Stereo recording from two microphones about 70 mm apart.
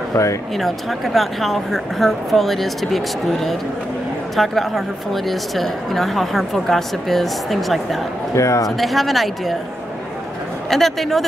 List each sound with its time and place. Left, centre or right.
0.6 s a woman's voice: centre
8.4 s speech: left
8.6 s a woman's voice: centre
10.7 s a woman's voice: centre